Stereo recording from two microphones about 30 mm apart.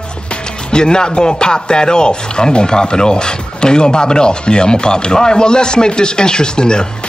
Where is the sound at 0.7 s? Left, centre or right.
Left.